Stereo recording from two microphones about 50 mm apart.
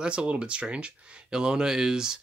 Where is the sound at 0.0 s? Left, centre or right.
Right.